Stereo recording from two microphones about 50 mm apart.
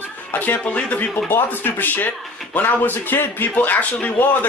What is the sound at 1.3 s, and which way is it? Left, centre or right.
Speech, left.